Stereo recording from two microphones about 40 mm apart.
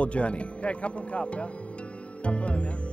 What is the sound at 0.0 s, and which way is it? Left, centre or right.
A man's voice, left.